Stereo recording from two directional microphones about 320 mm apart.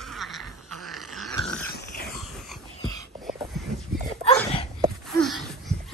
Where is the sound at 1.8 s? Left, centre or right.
Left.